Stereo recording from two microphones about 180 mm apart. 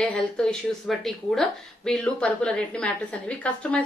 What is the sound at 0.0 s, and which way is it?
A woman's voice, 5° left (ahead or behind).